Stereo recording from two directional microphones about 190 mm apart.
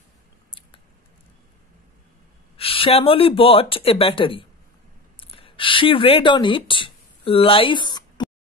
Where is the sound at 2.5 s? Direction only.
30° left (ahead or behind).